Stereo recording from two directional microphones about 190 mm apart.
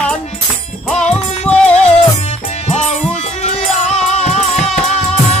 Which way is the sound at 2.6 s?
35° left (ahead or behind).